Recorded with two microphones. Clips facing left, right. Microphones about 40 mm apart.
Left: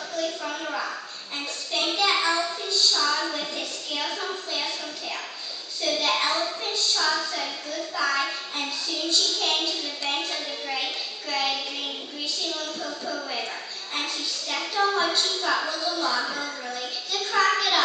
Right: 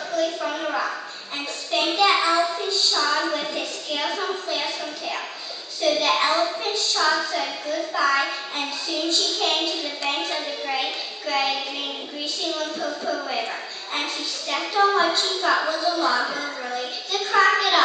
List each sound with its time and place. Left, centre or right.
0.2 s a sound: centre
1.7 s child singing: centre
5.8 s a woman's voice: centre
12.4 s music: centre
13.9 s a woman's voice: centre